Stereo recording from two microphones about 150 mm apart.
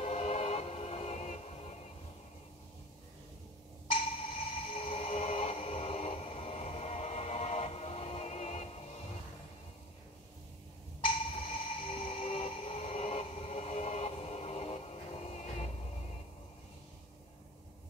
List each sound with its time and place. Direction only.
0.0 s music: 45° left (ahead or behind)
3.8 s sonar: 40° left (ahead or behind)
11.1 s music: 40° left (ahead or behind)
12.0 s a sound: 40° left (ahead or behind)